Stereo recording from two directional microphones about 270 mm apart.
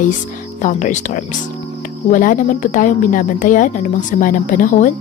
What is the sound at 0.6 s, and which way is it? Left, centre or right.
Speech, left.